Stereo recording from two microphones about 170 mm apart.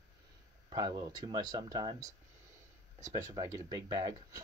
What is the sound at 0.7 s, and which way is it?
Speech, 25° right (ahead or behind).